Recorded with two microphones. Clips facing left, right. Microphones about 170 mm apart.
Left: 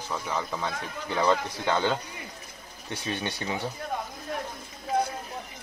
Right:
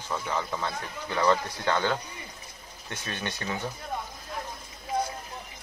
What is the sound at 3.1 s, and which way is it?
Speech, 15° left (ahead or behind).